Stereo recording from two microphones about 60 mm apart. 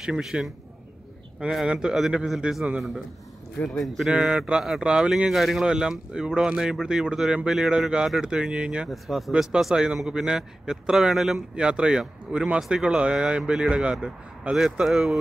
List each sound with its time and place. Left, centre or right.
0.0 s speech: centre
3.6 s speech: centre
4.1 s speech: centre
4.6 s speech: centre
5.3 s speech: centre
8.8 s speech: centre
11.5 s speech: centre